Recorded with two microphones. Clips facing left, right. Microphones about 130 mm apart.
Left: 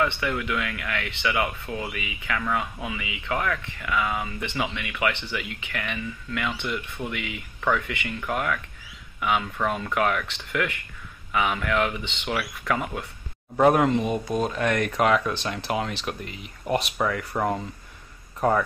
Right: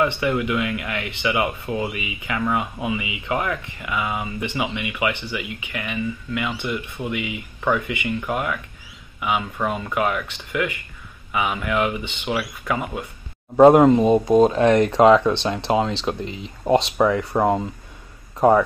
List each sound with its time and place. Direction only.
0.0 s speech: 15° right (ahead or behind)
13.6 s speech: 25° right (ahead or behind)
13.8 s speech: 35° right (ahead or behind)